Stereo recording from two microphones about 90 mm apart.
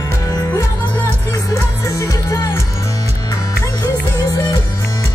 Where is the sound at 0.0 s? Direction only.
40° left (ahead or behind).